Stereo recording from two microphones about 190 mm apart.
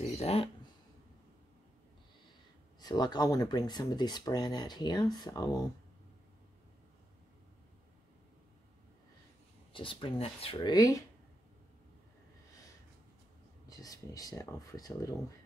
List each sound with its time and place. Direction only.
0.0 s a sound: 30° left (ahead or behind)
2.8 s speech: 20° left (ahead or behind)
9.7 s speech: 25° left (ahead or behind)
13.7 s speech: 20° left (ahead or behind)